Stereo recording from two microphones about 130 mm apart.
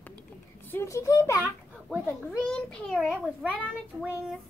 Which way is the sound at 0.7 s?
20° left (ahead or behind).